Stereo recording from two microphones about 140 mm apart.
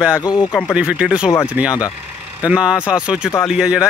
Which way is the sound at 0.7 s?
5° right (ahead or behind).